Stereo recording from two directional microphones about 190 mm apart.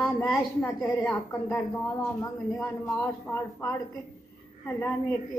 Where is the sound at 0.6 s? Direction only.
10° left (ahead or behind).